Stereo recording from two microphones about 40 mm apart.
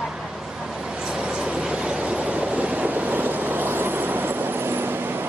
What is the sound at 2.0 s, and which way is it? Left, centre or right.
Vehicle, right.